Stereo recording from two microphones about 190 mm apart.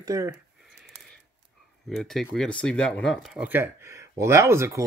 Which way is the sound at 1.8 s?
Centre (ahead or behind).